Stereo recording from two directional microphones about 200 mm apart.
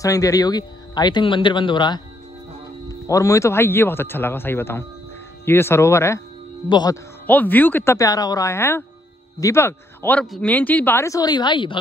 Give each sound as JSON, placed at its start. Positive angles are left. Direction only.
{"t": 0.0, "sound": "speech", "side_deg": 15}
{"t": 7.2, "sound": "speech", "side_deg": 10}